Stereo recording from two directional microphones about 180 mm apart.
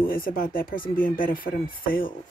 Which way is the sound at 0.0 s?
50° left (ahead or behind).